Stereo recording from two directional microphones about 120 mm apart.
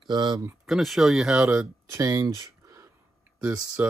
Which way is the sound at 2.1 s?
35° right (ahead or behind).